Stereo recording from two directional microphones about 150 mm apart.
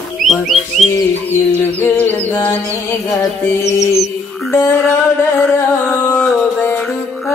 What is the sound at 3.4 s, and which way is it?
Music, 20° left (ahead or behind).